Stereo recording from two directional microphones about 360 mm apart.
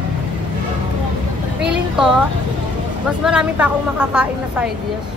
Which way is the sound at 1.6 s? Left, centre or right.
Centre.